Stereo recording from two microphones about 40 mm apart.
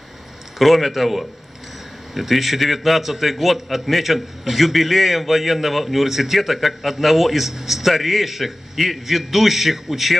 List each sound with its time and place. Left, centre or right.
0.6 s a man's voice: centre